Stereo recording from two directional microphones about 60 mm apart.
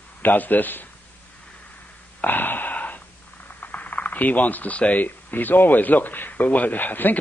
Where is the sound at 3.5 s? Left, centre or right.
Left.